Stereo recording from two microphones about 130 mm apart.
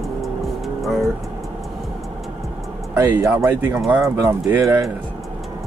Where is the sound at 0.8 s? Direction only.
Centre (ahead or behind).